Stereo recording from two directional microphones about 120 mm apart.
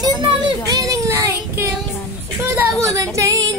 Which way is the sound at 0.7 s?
30° right (ahead or behind).